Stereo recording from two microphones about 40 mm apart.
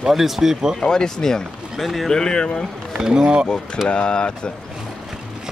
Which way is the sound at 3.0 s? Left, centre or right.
Centre.